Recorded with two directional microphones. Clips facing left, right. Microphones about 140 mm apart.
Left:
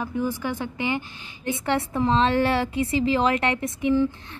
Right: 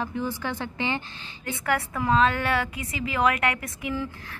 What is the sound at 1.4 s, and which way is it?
A woman's voice, 25° left (ahead or behind).